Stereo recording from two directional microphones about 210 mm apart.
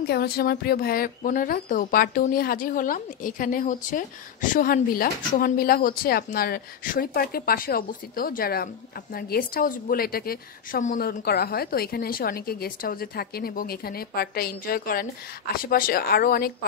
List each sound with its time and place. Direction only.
0.0 s speech: 50° left (ahead or behind)